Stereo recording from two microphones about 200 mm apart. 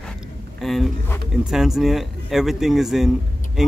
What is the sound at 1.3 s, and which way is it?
Speech, centre (ahead or behind).